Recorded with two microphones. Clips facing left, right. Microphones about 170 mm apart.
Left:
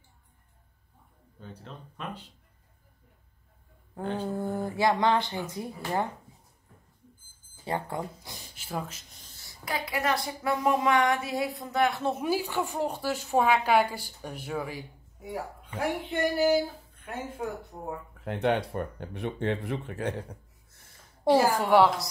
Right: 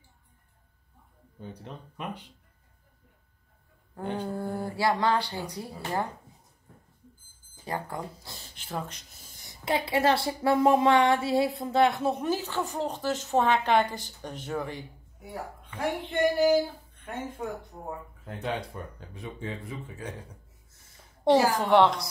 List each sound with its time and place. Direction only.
1.4 s speech: 15° right (ahead or behind)
4.0 s speech: 15° right (ahead or behind)
4.4 s speech: 20° left (ahead or behind)
7.6 s speech: 20° left (ahead or behind)
9.2 s a woman's voice: 15° right (ahead or behind)
12.2 s speech: 10° left (ahead or behind)
18.2 s speech: 65° left (ahead or behind)
21.2 s speech: 5° left (ahead or behind)